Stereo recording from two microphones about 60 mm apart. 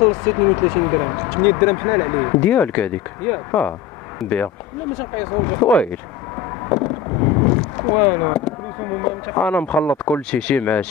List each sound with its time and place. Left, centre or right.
0.0 s speech: left
1.4 s speech: left
2.4 s speech: left
4.2 s speech: centre
5.3 s speech: left
5.7 s speech: left
6.7 s a sound: left
8.9 s speech: left
9.4 s speech: left